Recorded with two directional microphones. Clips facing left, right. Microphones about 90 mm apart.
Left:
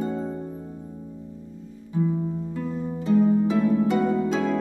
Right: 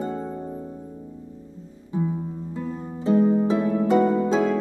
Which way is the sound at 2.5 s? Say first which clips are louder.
Left 2 dB; 25° right (ahead or behind).